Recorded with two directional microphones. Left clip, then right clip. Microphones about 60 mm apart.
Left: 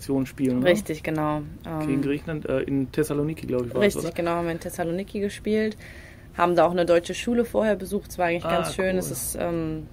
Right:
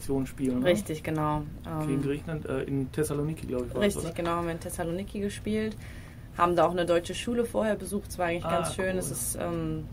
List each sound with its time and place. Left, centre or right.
0.1 s speech: left